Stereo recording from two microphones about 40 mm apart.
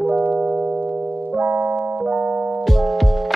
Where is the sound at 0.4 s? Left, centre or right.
Right.